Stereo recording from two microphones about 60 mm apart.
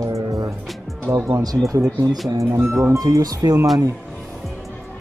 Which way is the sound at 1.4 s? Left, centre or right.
Right.